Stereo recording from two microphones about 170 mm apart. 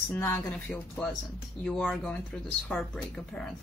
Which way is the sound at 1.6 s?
5° left (ahead or behind).